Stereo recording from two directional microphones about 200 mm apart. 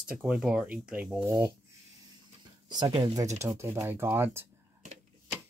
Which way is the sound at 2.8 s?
20° right (ahead or behind).